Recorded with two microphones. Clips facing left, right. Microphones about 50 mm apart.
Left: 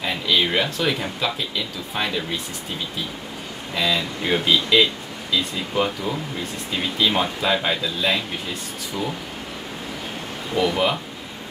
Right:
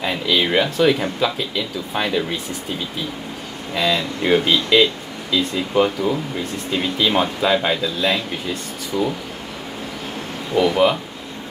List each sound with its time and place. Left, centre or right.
0.0 s speech: centre
3.7 s speech: centre
10.5 s speech: centre